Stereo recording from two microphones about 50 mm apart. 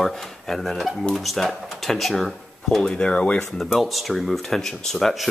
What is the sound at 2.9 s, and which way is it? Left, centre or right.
Speech, centre.